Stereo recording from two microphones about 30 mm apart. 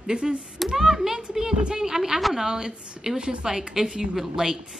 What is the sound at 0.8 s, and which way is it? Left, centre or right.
A woman's voice, centre.